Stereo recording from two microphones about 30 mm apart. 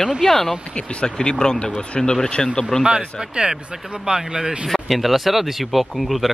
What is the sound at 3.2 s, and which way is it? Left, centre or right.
Speech, right.